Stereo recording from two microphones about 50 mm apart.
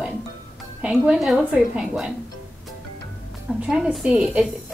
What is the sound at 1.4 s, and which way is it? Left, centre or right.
Speech, right.